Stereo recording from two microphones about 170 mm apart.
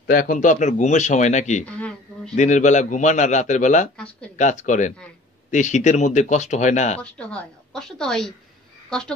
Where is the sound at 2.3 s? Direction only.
45° left (ahead or behind).